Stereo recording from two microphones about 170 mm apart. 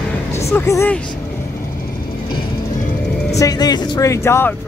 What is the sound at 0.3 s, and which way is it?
Speech, 15° left (ahead or behind).